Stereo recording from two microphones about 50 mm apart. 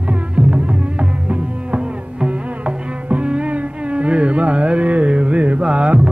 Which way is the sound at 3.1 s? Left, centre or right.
Right.